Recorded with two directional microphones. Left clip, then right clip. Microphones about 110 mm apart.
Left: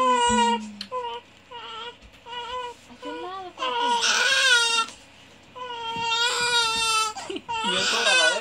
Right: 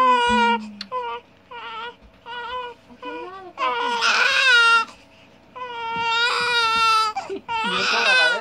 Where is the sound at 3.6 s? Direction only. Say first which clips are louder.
Right 2 dB; 15° left (ahead or behind).